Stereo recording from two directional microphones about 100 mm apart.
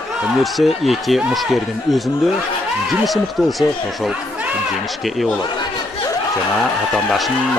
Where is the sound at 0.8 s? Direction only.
Centre (ahead or behind).